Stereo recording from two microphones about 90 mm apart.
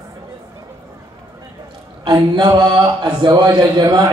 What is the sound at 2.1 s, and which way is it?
Speech, 50° right (ahead or behind).